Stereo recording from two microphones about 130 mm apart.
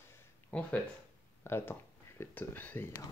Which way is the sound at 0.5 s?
10° left (ahead or behind).